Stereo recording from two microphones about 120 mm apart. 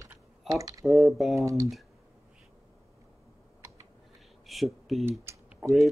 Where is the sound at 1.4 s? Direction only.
25° right (ahead or behind).